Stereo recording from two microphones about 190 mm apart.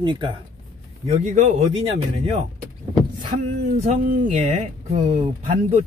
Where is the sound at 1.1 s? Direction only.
35° right (ahead or behind).